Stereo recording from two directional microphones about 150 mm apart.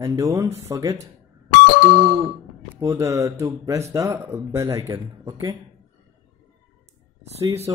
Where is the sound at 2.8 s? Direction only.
20° right (ahead or behind).